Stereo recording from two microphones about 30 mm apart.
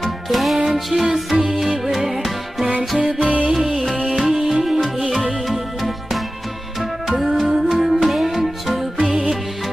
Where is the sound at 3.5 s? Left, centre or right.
Centre.